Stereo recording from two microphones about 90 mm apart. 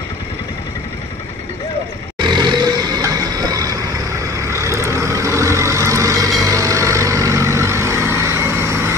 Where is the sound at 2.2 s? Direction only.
55° right (ahead or behind).